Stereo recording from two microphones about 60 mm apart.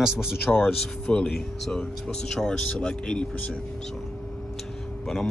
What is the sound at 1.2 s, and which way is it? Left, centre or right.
Speech, centre.